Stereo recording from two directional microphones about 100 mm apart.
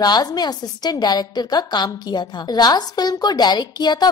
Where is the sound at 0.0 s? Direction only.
40° left (ahead or behind).